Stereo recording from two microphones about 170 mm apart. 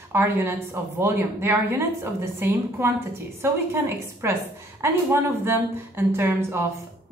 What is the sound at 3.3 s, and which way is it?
Speech, 15° right (ahead or behind).